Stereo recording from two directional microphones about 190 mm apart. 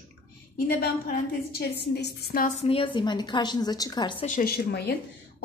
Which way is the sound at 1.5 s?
60° left (ahead or behind).